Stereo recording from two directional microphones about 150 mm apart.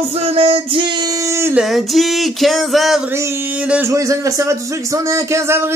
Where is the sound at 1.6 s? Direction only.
Centre (ahead or behind).